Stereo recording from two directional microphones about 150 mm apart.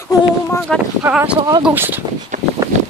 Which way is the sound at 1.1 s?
5° right (ahead or behind).